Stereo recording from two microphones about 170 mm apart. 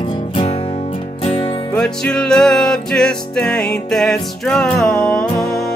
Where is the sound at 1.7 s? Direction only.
5° left (ahead or behind).